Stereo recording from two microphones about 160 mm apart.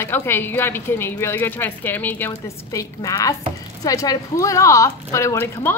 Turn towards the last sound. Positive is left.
turn(degrees=15)  # may be behind; listen again after turning